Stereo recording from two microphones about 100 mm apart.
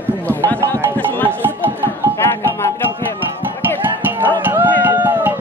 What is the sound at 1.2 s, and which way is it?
Music, 20° right (ahead or behind).